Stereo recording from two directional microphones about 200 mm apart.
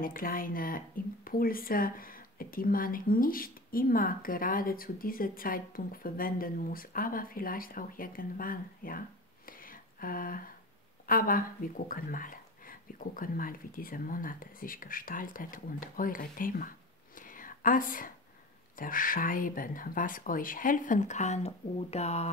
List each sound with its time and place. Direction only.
0.0 s speech: 45° left (ahead or behind)
9.5 s a sound: 45° left (ahead or behind)
11.1 s speech: 45° left (ahead or behind)